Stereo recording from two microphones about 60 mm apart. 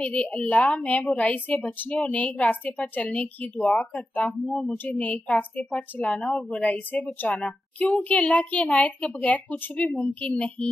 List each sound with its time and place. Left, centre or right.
0.0 s a woman's voice: centre
4.3 s a woman's voice: centre
4.8 s a woman's voice: left
6.9 s a woman's voice: left